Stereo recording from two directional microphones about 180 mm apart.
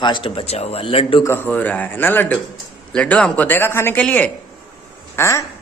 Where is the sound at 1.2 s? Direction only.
10° left (ahead or behind).